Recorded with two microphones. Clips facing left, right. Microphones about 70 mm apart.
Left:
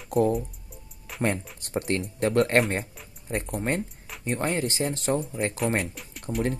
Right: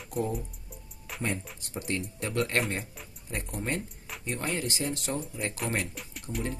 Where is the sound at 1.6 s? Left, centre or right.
Left.